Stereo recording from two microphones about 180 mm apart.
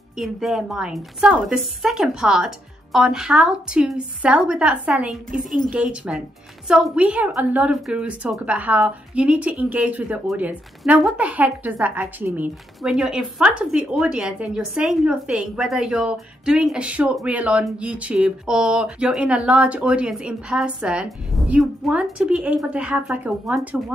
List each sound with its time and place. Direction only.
0.2 s a woman's voice: centre (ahead or behind)